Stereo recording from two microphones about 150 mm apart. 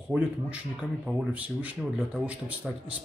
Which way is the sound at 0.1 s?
10° right (ahead or behind).